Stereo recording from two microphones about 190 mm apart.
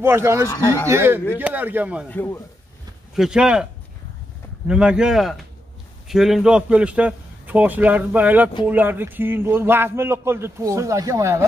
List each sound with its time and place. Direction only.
0.0 s a man's voice: 15° right (ahead or behind)
0.5 s speech: 20° left (ahead or behind)
0.8 s a man's voice: 15° right (ahead or behind)
2.0 s a man's voice: 10° left (ahead or behind)
3.2 s speech: 5° right (ahead or behind)
4.6 s a man's voice: 5° right (ahead or behind)